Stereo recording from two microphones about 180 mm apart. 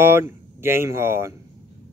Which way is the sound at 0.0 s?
15° right (ahead or behind).